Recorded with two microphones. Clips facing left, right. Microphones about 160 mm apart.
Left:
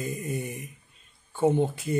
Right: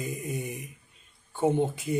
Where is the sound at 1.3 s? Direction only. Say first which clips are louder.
Left 2 dB; 20° right (ahead or behind).